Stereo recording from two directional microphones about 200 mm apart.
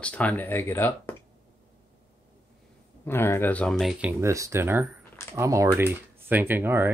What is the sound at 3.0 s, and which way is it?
Speech, 10° left (ahead or behind).